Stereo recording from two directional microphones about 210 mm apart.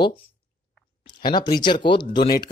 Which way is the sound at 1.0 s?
20° left (ahead or behind).